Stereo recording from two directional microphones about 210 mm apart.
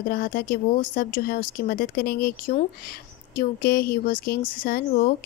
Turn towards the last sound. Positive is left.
turn(degrees=45)  # may be behind; listen again after turning